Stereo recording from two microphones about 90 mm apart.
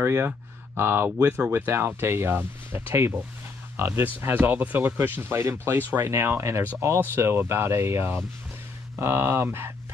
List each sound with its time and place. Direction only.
0.0 s speech: 25° right (ahead or behind)